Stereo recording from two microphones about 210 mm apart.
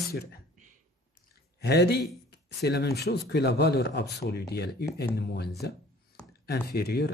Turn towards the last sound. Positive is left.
turn(degrees=50)  # may be behind; listen again after turning